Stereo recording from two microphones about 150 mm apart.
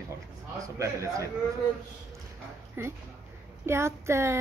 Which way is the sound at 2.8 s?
15° right (ahead or behind).